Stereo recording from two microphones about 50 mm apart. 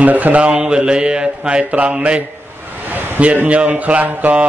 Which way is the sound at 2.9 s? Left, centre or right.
Right.